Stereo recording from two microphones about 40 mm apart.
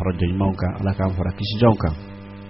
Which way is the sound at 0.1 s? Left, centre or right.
Centre.